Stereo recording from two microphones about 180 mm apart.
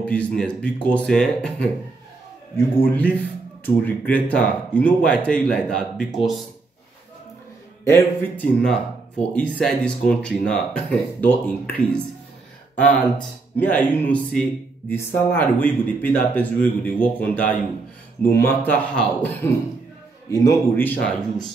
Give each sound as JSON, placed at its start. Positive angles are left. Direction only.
{"t": 0.0, "sound": "speech", "side_deg": 5}
{"t": 7.8, "sound": "speech", "side_deg": 15}
{"t": 13.6, "sound": "speech", "side_deg": 10}